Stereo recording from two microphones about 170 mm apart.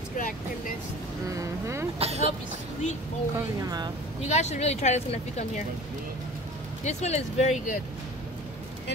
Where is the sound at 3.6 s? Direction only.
25° right (ahead or behind).